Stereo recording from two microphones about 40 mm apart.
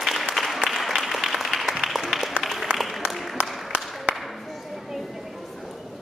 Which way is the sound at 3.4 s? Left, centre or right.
Right.